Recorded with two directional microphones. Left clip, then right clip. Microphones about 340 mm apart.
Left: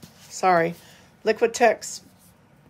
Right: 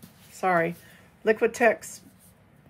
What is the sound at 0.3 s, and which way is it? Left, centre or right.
Speech, centre.